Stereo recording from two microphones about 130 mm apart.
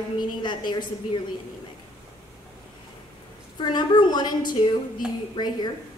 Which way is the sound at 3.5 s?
35° left (ahead or behind).